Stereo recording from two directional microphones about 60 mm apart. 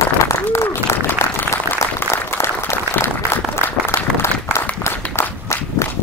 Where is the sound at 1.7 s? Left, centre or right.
Right.